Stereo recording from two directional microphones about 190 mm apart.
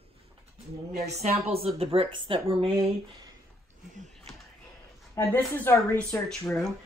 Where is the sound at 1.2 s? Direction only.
30° right (ahead or behind).